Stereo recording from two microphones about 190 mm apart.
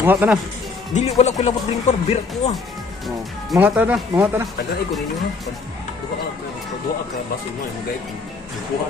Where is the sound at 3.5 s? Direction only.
10° right (ahead or behind).